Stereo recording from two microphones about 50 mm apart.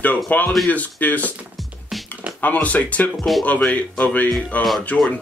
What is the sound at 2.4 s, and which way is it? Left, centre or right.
Speech, left.